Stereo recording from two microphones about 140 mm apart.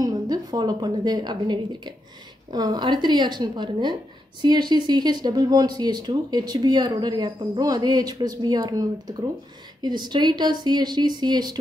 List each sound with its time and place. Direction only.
0.0 s a woman's voice: 30° right (ahead or behind)